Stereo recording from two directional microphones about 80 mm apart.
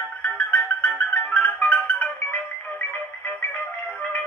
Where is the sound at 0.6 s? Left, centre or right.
Centre.